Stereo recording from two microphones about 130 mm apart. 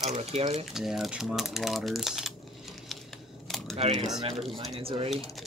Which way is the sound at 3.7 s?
55° right (ahead or behind).